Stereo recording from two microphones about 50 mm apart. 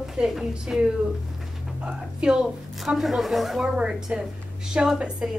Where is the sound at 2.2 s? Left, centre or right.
Centre.